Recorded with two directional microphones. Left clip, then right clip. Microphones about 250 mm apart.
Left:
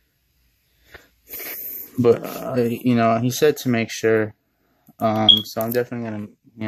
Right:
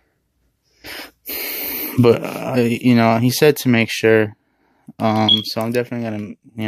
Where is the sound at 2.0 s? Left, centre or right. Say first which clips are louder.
Right 3 dB; right.